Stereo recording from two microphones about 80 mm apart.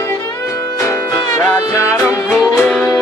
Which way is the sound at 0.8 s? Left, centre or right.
Left.